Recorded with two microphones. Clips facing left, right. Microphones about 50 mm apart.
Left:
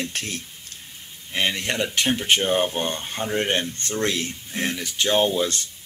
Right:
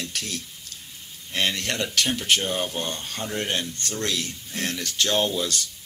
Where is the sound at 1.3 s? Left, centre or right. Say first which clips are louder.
Left 2 dB; centre.